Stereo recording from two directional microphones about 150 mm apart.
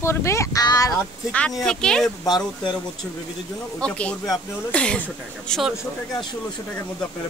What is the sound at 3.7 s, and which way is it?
Speech, 5° left (ahead or behind).